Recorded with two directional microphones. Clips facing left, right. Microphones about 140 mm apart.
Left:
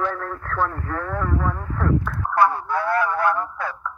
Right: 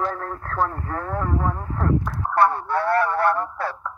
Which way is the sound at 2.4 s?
Centre (ahead or behind).